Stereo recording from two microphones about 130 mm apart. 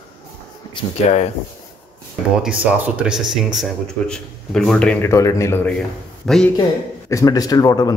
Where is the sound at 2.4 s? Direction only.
10° right (ahead or behind).